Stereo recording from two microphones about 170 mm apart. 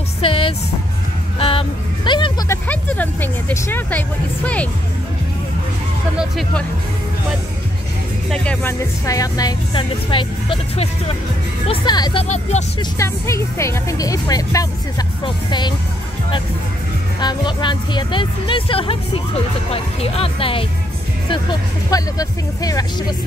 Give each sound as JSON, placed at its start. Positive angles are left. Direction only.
{"t": 0.2, "sound": "music", "side_deg": 35}
{"t": 2.5, "sound": "speech", "side_deg": 10}
{"t": 6.1, "sound": "speech", "side_deg": 0}
{"t": 8.3, "sound": "speech", "side_deg": 5}
{"t": 9.0, "sound": "speech", "side_deg": 20}
{"t": 13.0, "sound": "speech", "side_deg": 15}
{"t": 17.2, "sound": "speech", "side_deg": 25}